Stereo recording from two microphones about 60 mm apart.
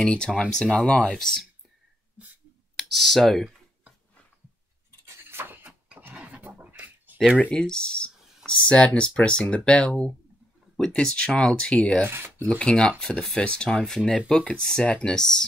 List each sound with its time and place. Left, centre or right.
0.0 s speech: centre
1.1 s speech: centre
2.7 s speech: centre
5.0 s cutlery: right
5.9 s a sound: right
7.5 s speech: centre
12.1 s speech: right
12.4 s speech: centre